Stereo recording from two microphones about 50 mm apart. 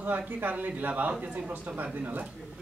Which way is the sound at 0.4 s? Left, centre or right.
Right.